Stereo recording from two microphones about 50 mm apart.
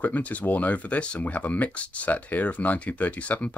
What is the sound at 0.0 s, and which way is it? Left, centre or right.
Speech, left.